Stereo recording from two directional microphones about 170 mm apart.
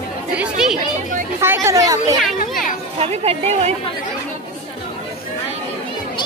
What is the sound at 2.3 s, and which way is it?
Children playing, 55° left (ahead or behind).